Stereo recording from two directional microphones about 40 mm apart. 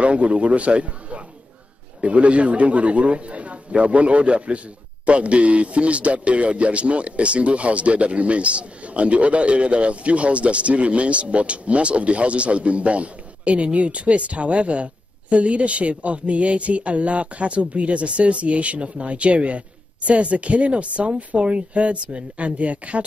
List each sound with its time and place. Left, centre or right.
0.0 s a man's voice: right